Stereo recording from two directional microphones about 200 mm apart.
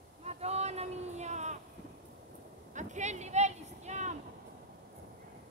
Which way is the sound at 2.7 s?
35° right (ahead or behind).